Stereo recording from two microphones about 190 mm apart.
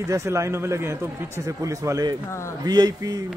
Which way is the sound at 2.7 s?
20° right (ahead or behind).